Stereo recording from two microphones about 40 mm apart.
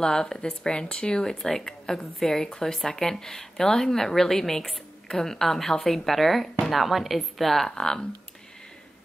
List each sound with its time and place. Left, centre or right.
0.0 s a woman's voice: centre